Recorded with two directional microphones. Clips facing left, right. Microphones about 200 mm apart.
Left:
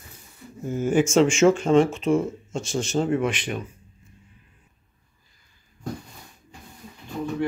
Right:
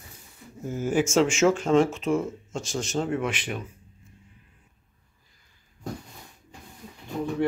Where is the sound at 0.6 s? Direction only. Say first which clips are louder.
Left 3 dB; 5° right (ahead or behind).